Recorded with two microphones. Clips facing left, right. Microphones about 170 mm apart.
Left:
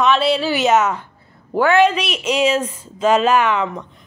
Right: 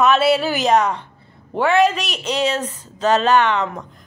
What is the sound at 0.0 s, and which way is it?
A woman's voice, 5° right (ahead or behind).